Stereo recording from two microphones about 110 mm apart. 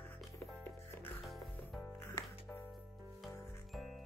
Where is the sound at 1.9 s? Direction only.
20° left (ahead or behind).